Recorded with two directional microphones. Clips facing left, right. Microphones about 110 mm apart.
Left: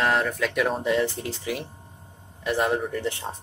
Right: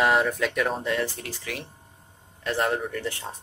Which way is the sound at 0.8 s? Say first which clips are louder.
Left 4 dB; 20° left (ahead or behind).